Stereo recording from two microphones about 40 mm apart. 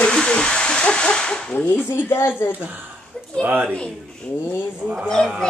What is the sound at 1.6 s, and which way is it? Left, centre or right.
Speech, left.